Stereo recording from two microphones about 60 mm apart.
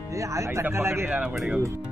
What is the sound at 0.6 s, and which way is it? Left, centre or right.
Speech, right.